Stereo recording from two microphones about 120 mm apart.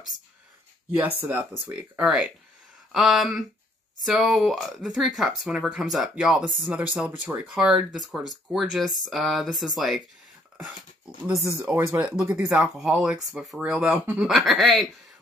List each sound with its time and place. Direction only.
0.9 s speech: 20° right (ahead or behind)
1.7 s speech: 5° right (ahead or behind)
7.5 s speech: 5° right (ahead or behind)
11.6 s speech: 20° right (ahead or behind)
12.4 s speech: centre (ahead or behind)